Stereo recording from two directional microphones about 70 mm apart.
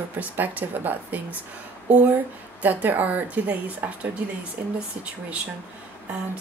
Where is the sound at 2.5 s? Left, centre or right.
Right.